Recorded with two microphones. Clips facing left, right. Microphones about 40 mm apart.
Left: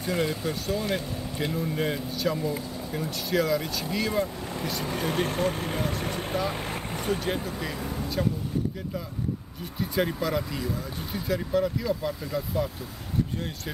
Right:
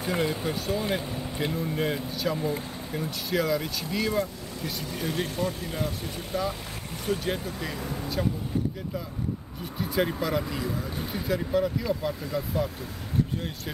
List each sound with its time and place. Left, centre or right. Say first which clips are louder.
0.0 s speech: even; centre
4.9 s speech: left 3 dB; left
5.3 s speech: left 3 dB; left
6.3 s speech: right 1 dB; left
7.1 s speech: even; centre
9.8 s speech: even; centre